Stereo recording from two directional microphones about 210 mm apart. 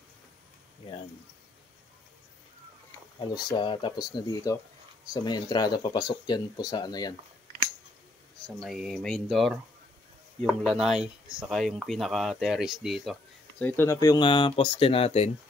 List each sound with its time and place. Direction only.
3.2 s speech: 20° left (ahead or behind)
8.5 s speech: centre (ahead or behind); by 15.3 s 30° left (ahead or behind)